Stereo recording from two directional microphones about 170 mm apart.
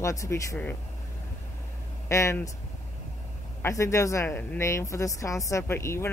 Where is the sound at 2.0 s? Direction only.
15° left (ahead or behind).